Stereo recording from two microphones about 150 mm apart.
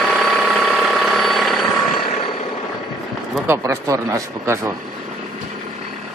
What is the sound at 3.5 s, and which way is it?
Speech, 20° right (ahead or behind).